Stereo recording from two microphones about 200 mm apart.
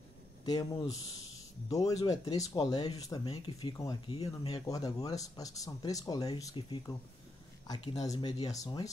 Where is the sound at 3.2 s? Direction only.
30° left (ahead or behind).